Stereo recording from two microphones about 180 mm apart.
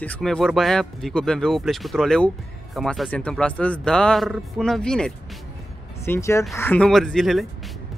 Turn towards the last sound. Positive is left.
turn(degrees=0)  # may be behind; listen again after turning